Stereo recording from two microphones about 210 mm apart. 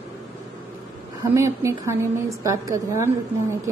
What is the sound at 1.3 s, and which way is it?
A woman's voice, 15° right (ahead or behind).